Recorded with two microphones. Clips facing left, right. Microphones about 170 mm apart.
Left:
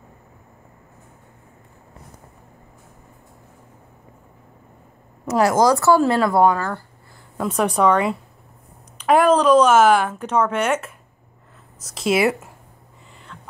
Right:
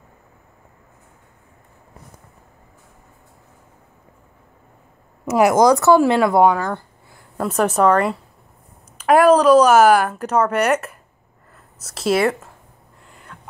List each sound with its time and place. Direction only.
5.4 s a woman's voice: 20° right (ahead or behind)
7.3 s a woman's voice: 5° right (ahead or behind)
13.3 s a sound: 10° right (ahead or behind)